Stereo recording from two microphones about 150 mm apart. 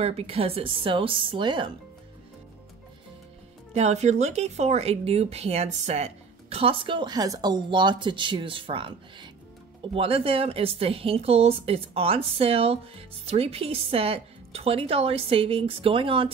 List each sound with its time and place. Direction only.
0.0 s speech: 40° right (ahead or behind)
3.7 s speech: 45° right (ahead or behind)